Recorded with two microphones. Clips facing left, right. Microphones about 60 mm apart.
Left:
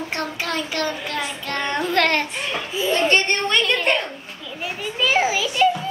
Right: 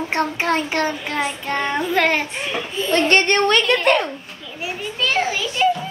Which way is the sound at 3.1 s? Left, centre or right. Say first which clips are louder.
Right 4 dB; right.